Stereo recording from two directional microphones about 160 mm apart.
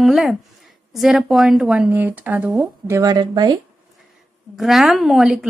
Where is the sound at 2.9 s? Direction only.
25° right (ahead or behind).